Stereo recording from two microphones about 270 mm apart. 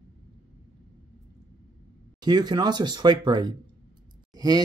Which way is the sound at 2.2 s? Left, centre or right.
Centre.